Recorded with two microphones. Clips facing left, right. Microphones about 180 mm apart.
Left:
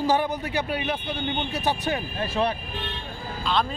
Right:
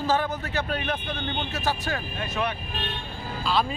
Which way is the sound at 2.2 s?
30° left (ahead or behind).